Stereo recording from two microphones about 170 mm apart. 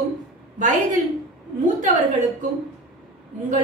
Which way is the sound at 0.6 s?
45° right (ahead or behind).